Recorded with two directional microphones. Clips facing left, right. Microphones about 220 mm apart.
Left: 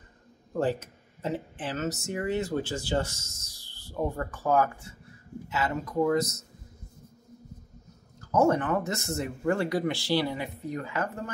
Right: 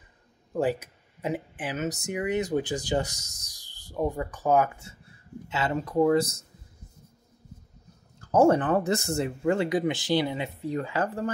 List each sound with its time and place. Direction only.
0.5 s speech: 10° right (ahead or behind); by 6.4 s 30° right (ahead or behind)
8.3 s speech: 30° right (ahead or behind)